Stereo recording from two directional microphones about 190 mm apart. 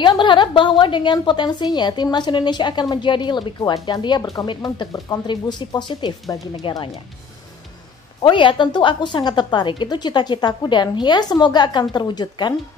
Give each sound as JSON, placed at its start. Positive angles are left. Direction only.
{"t": 0.0, "sound": "a woman's voice", "side_deg": 25}
{"t": 8.2, "sound": "a woman's voice", "side_deg": 25}